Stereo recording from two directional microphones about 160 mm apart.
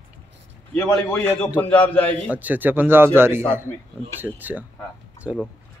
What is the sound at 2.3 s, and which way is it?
Speech, 10° right (ahead or behind).